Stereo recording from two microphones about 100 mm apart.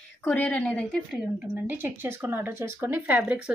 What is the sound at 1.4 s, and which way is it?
Speech, 20° right (ahead or behind).